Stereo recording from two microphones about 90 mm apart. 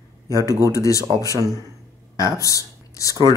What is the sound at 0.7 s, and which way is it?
Speech, 35° left (ahead or behind).